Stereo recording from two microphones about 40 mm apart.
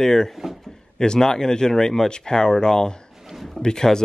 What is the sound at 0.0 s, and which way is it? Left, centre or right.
Speech, centre.